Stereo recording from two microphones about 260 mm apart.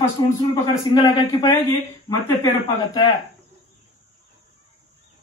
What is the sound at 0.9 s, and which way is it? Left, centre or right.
A man's voice, centre.